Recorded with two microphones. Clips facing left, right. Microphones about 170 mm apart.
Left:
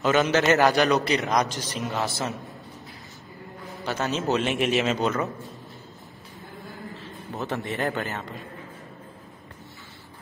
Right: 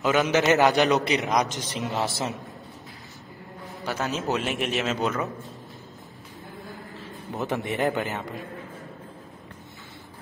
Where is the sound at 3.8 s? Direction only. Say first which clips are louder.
Left 2 dB; 5° right (ahead or behind).